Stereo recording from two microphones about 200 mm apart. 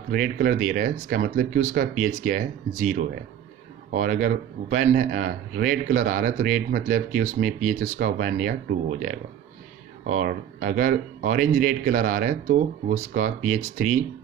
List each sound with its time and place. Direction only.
0.1 s a man's voice: 45° right (ahead or behind)